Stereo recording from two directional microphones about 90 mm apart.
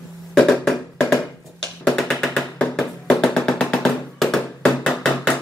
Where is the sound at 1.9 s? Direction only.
Centre (ahead or behind).